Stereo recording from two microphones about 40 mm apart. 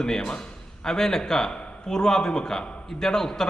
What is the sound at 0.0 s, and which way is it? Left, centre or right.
A man's voice, centre.